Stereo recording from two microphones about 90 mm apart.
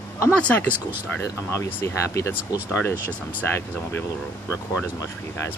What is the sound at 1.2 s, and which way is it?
Speech, 35° left (ahead or behind).